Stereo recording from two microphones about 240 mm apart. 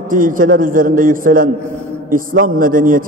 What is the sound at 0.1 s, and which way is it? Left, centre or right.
A man's voice, right.